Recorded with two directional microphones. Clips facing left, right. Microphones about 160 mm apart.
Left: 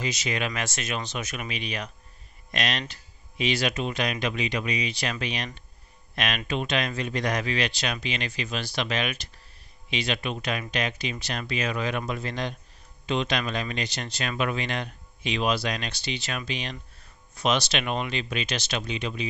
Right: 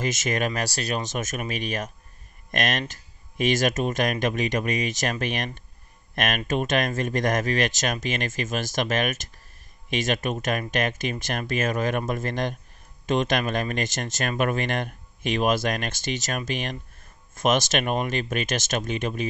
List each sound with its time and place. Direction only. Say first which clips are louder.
0.0 s speech: right 4 dB; 45° right (ahead or behind)